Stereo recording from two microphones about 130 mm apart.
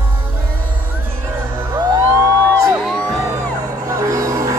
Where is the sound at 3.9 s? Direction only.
25° right (ahead or behind).